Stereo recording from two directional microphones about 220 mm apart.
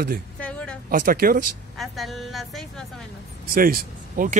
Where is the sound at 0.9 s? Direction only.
40° right (ahead or behind).